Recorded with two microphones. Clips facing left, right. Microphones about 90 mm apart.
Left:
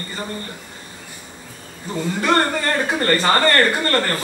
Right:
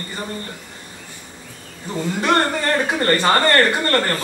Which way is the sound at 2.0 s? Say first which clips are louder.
Even; 20° right (ahead or behind).